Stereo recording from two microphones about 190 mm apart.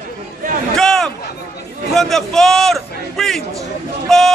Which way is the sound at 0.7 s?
Centre (ahead or behind).